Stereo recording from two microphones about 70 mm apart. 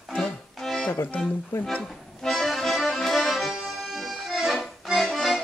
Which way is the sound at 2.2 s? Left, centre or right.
Centre.